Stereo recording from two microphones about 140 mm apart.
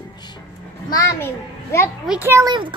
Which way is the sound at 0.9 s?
20° left (ahead or behind).